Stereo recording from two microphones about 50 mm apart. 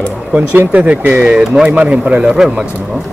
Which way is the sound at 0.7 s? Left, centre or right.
Right.